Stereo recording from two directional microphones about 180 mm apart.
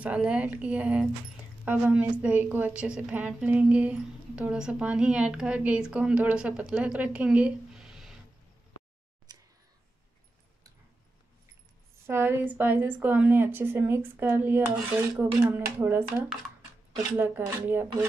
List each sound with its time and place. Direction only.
0.0 s a woman's voice: 5° right (ahead or behind)
9.3 s a sound: 25° right (ahead or behind)
12.1 s a woman's voice: 10° right (ahead or behind)